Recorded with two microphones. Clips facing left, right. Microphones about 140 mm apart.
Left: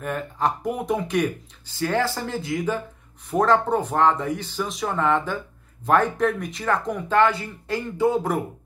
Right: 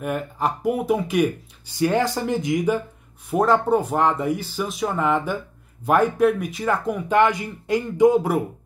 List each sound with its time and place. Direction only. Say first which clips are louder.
0.0 s speech: right 1 dB; 10° right (ahead or behind)